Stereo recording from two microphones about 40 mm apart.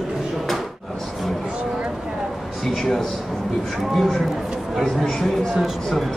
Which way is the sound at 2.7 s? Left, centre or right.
Centre.